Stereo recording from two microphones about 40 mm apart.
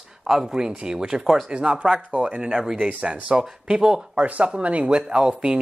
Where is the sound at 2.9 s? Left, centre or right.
Right.